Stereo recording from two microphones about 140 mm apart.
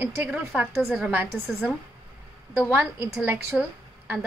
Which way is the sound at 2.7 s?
15° right (ahead or behind).